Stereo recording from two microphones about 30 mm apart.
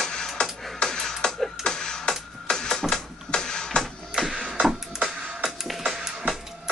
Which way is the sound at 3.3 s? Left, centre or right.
Left.